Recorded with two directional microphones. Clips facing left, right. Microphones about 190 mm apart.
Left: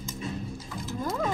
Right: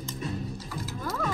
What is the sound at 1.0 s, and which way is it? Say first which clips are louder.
Roaring cats: left 3 dB; 20° left (ahead or behind).